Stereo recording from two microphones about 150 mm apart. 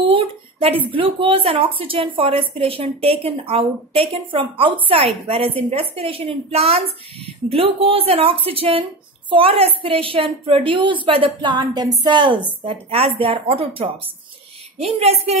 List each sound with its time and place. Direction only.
0.0 s a woman's voice: 35° right (ahead or behind)